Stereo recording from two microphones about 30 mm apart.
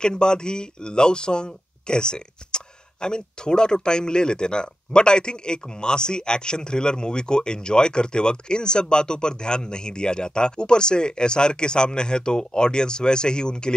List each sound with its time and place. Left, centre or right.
0.0 s speech: left